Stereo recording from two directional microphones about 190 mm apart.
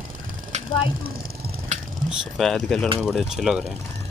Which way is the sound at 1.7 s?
40° right (ahead or behind).